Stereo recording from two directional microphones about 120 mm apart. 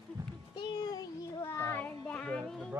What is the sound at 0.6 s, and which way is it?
Child singing, 35° left (ahead or behind).